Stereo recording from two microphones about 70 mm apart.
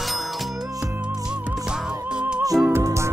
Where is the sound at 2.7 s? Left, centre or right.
Right.